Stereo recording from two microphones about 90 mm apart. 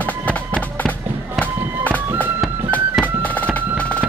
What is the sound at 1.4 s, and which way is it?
Music, 15° left (ahead or behind).